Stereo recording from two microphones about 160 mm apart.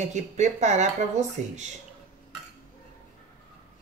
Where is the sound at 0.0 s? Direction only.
45° right (ahead or behind).